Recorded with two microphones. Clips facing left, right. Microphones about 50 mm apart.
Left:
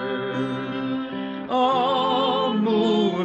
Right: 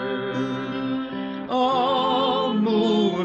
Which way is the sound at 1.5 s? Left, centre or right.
Centre.